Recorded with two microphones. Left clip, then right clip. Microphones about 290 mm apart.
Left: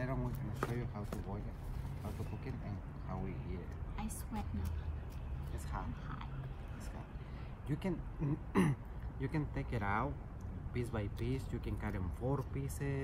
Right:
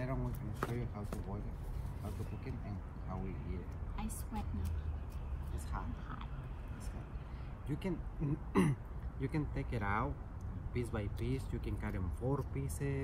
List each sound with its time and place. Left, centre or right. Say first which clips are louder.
0.2 s a sound: left 1 dB; centre
1.1 s a woman's voice: even; centre
5.7 s a woman's voice: even; centre
7.6 s speech: even; centre